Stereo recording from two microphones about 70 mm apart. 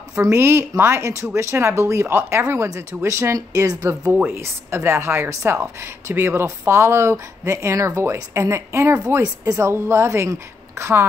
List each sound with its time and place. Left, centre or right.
0.1 s speech: right
4.1 s speech: right
9.2 s a woman's voice: right
9.7 s speech: right